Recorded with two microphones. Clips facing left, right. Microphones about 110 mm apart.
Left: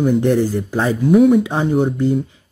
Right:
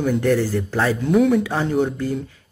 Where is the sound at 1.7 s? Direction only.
10° left (ahead or behind).